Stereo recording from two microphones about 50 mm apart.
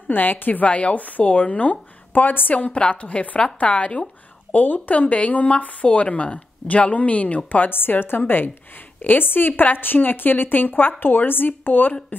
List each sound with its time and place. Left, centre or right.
0.1 s speech: left
4.5 s speech: left
7.7 s a woman's voice: left